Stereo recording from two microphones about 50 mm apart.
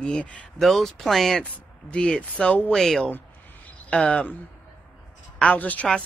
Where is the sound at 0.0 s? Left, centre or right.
Left.